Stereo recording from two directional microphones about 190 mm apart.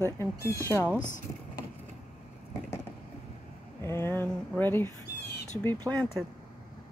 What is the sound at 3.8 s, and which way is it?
Speech, 10° left (ahead or behind).